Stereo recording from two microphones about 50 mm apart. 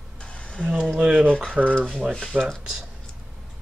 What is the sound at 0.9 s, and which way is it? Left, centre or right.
Speech, centre.